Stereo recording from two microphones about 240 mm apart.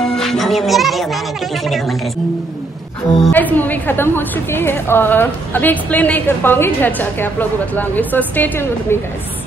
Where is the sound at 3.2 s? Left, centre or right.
Centre.